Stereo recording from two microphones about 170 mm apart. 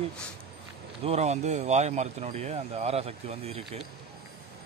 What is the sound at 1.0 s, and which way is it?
Speech, 40° right (ahead or behind).